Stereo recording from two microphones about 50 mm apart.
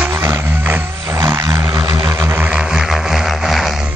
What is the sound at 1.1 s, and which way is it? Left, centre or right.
Vehicle, right.